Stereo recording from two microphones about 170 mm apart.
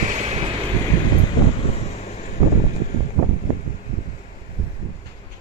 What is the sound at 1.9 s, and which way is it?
Wind noise, 45° left (ahead or behind).